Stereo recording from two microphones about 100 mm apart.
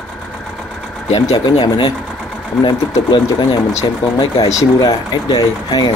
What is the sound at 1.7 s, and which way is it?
Speech, 55° left (ahead or behind).